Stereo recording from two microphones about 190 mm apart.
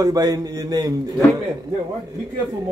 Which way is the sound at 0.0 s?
20° right (ahead or behind).